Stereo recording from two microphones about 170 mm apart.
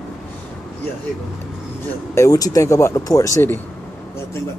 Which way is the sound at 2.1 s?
20° left (ahead or behind).